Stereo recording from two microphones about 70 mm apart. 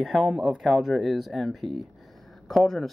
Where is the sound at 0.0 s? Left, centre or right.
Centre.